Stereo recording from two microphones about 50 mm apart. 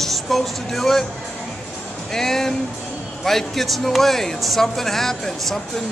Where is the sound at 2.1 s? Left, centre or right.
Centre.